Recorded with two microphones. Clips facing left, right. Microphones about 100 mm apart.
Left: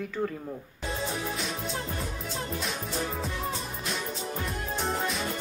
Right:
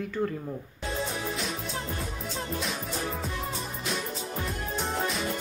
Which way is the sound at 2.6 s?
Centre (ahead or behind).